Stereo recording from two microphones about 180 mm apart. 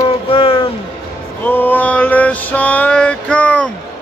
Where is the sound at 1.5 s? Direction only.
10° left (ahead or behind).